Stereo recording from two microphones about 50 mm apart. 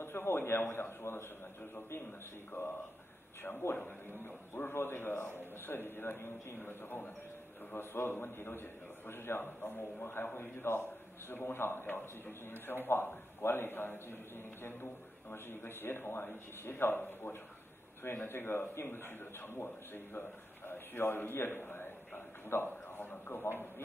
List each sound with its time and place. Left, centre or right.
0.0 s a man's voice: left
4.6 s a man's voice: left